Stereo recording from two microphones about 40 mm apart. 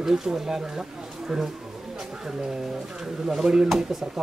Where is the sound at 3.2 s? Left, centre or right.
Centre.